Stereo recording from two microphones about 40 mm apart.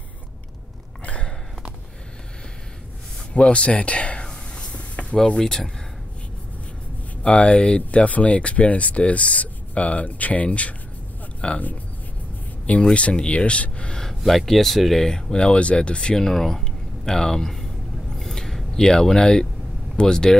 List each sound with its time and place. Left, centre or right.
3.3 s a sound: left
5.1 s speech: centre
5.4 s speech: centre
7.2 s speech: left
12.9 s speech: left
14.2 s speech: centre
15.3 s speech: left
16.2 s speech: centre
18.1 s a sound: centre
18.7 s speech: centre